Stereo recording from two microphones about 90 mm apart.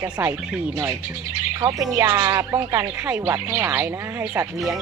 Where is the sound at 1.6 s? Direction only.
40° right (ahead or behind).